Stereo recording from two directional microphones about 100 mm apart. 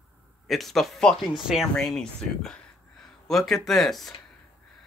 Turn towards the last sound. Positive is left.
turn(degrees=5)  # may be behind; listen again after turning